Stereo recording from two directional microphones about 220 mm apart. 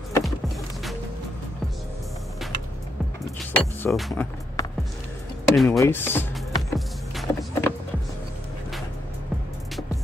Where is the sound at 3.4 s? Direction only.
5° left (ahead or behind).